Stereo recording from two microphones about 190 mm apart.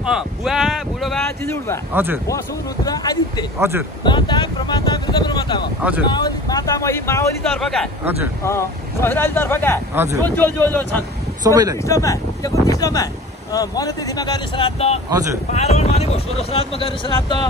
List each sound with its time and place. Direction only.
0.0 s speech: centre (ahead or behind)
1.9 s speech: 10° right (ahead or behind)
2.2 s speech: 20° left (ahead or behind)
3.5 s speech: 10° right (ahead or behind)
4.0 s speech: 25° left (ahead or behind)
7.6 s speech: 5° left (ahead or behind)
8.5 s speech: 15° left (ahead or behind)
11.4 s speech: 20° right (ahead or behind)
11.8 s speech: 15° left (ahead or behind)